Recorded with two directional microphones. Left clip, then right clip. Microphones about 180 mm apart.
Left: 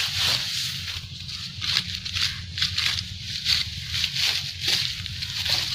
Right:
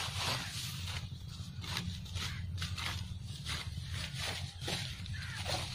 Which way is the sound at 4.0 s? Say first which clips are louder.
Left 17 dB; 15° right (ahead or behind).